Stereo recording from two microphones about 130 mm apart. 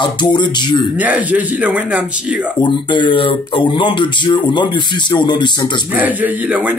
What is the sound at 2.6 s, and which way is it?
Speech, 40° left (ahead or behind).